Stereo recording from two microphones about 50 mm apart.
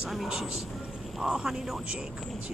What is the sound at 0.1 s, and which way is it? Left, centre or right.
Speech, centre.